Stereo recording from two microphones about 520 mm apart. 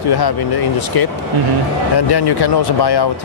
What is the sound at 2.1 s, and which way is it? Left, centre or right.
Speech, left.